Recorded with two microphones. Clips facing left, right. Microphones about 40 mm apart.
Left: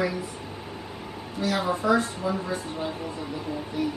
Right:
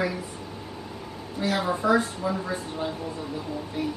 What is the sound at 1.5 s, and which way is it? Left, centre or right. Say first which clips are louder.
A woman's voice: even; centre.